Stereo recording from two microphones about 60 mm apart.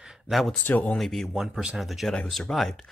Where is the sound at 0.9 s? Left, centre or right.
Centre.